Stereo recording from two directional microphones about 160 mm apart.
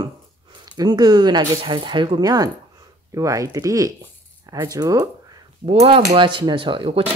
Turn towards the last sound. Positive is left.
turn(degrees=-35)  # may be behind; listen again after turning